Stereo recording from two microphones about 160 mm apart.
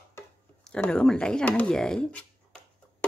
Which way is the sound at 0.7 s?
5° left (ahead or behind).